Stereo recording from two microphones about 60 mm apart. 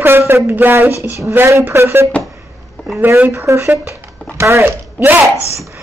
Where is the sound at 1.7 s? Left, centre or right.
Right.